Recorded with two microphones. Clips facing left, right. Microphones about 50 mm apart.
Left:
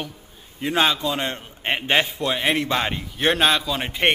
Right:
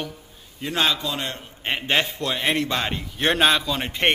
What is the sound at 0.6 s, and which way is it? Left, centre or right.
A man's voice, centre.